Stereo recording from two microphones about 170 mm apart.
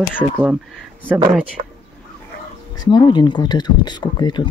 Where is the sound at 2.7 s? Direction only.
25° left (ahead or behind).